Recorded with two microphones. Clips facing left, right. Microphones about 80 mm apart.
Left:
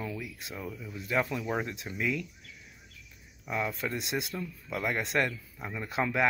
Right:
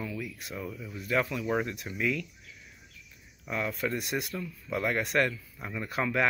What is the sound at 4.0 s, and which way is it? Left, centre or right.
Speech, left.